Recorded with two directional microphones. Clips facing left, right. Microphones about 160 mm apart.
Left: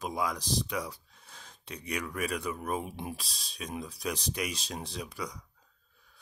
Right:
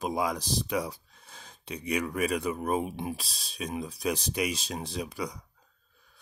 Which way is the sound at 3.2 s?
5° right (ahead or behind).